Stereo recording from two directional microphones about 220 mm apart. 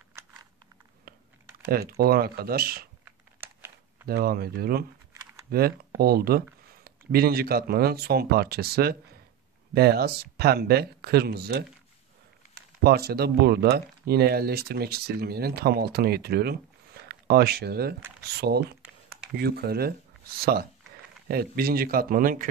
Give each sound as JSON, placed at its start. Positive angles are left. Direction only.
{"t": 1.1, "sound": "typing", "side_deg": -40}
{"t": 1.7, "sound": "speech", "side_deg": -45}
{"t": 4.1, "sound": "speech", "side_deg": -45}
{"t": 12.8, "sound": "speech", "side_deg": -45}